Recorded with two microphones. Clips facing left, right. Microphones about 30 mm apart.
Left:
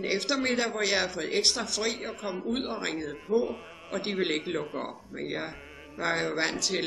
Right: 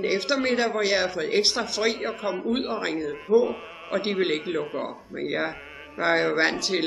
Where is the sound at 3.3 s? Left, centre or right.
Right.